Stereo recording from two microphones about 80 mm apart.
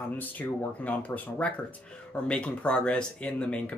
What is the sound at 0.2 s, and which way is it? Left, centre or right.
Speech, left.